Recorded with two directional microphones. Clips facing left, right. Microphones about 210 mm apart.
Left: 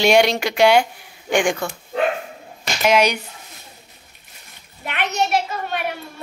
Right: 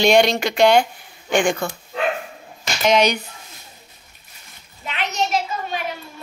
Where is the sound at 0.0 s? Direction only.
10° left (ahead or behind).